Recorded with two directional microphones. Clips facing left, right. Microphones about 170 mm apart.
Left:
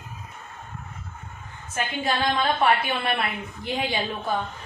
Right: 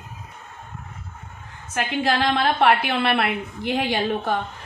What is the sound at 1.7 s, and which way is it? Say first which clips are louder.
A woman's voice: right 4 dB; 75° right (ahead or behind).